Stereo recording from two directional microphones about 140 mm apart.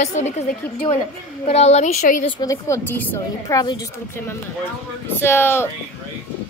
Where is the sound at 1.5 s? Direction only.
50° left (ahead or behind).